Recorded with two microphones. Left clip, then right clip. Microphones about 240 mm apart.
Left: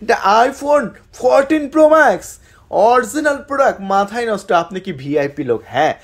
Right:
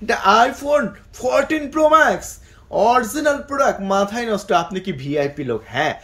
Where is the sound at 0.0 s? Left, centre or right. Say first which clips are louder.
Left 2 dB; centre.